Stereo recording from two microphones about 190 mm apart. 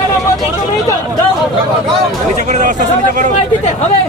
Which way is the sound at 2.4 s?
40° right (ahead or behind).